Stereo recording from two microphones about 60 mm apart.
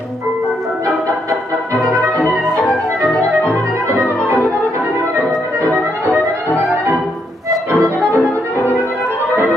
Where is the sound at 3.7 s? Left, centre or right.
Right.